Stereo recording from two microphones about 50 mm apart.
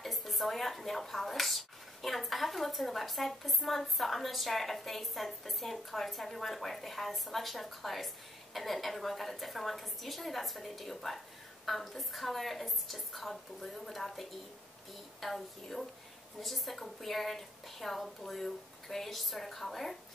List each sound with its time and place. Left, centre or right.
0.0 s speech: centre